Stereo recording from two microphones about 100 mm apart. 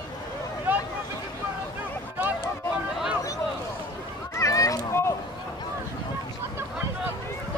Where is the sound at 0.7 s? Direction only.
15° right (ahead or behind).